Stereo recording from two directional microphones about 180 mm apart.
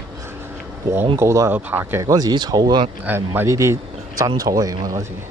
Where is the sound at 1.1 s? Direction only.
15° right (ahead or behind).